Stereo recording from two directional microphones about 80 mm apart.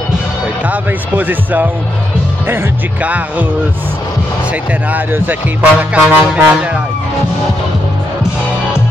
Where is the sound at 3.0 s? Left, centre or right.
Centre.